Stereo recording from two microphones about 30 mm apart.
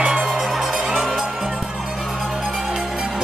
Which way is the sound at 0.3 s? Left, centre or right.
Centre.